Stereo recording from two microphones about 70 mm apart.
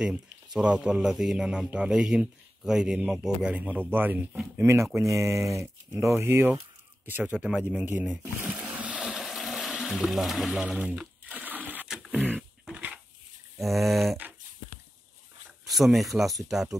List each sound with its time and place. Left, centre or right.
0.6 s speech: centre
4.6 s speech: right
7.4 s speech: centre; by 8.5 s right
8.5 s boat: right
9.0 s water: centre
10.6 s speech: centre
10.9 s a sound: right
11.9 s a sound: centre
12.7 s dog: centre
13.6 s a sound: centre
15.6 s speech: centre